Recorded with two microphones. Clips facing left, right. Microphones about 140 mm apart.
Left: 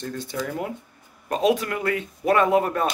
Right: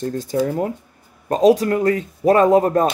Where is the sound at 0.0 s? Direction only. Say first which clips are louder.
Right 9 dB; 40° right (ahead or behind).